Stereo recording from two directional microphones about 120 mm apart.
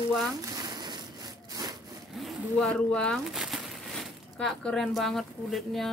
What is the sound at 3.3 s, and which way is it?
Speech, 5° right (ahead or behind).